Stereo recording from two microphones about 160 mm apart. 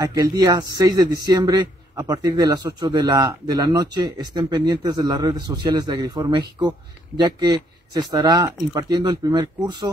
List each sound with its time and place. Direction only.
0.0 s a man's voice: 25° right (ahead or behind)